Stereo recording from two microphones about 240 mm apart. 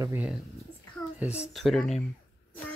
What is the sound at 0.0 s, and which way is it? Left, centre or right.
Speech, centre.